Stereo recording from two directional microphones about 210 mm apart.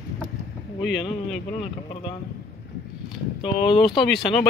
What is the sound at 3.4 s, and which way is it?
Speech, 25° left (ahead or behind).